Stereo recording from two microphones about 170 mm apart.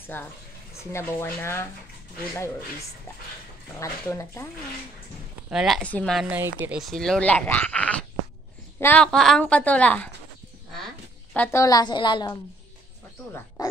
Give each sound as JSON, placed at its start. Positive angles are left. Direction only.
{"t": 0.1, "sound": "a woman's voice", "side_deg": 10}
{"t": 3.8, "sound": "a woman's voice", "side_deg": 15}
{"t": 5.5, "sound": "a woman's voice", "side_deg": 0}
{"t": 6.2, "sound": "speech", "side_deg": -10}
{"t": 6.8, "sound": "a woman's voice", "side_deg": 0}
{"t": 11.3, "sound": "a woman's voice", "side_deg": 15}